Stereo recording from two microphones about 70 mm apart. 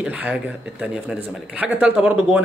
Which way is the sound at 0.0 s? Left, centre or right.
Centre.